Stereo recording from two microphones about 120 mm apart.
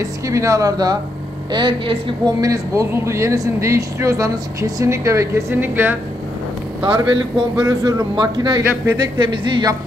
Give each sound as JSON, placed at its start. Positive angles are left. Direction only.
{"t": 0.0, "sound": "a man's voice", "side_deg": -25}
{"t": 2.4, "sound": "speech", "side_deg": -30}
{"t": 6.9, "sound": "a man's voice", "side_deg": -40}